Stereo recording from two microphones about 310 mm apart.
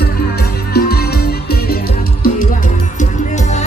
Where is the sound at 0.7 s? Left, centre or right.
Left.